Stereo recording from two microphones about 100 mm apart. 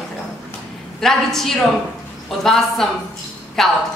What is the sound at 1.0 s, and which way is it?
A man's voice, 5° left (ahead or behind).